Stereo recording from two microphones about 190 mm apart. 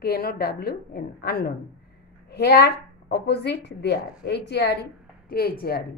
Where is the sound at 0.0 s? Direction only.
55° left (ahead or behind).